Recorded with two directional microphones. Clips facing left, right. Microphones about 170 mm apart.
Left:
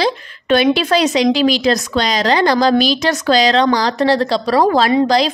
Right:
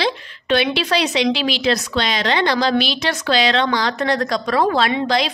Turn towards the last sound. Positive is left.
turn(degrees=40)  # may be behind; listen again after turning